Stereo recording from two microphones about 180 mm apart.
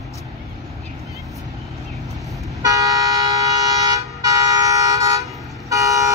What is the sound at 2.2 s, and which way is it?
Toot, centre (ahead or behind).